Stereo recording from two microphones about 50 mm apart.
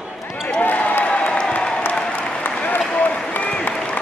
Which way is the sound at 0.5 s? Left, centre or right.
Left.